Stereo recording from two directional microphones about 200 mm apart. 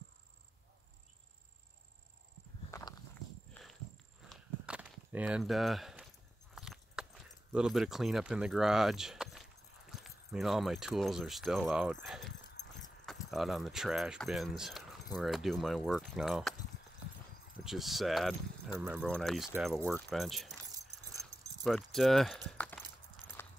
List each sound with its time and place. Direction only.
2.7 s walk: 15° left (ahead or behind)
4.3 s a sound: 5° right (ahead or behind)
6.5 s keys jangling: centre (ahead or behind)
9.8 s speech: centre (ahead or behind)
17.6 s speech: centre (ahead or behind)
21.6 s speech: centre (ahead or behind)
23.4 s clip-clop: 10° left (ahead or behind)